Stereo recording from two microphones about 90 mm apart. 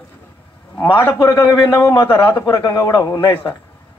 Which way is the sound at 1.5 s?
30° left (ahead or behind).